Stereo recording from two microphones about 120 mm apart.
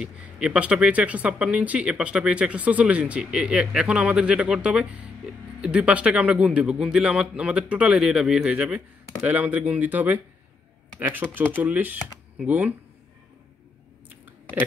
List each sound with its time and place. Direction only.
0.0 s speech: 10° right (ahead or behind)
14.0 s chewing: 15° right (ahead or behind)